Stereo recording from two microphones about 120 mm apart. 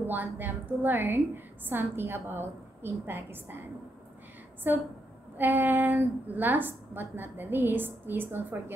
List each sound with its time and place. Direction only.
0.0 s a woman's voice: 15° right (ahead or behind)
4.7 s a woman's voice: 15° right (ahead or behind)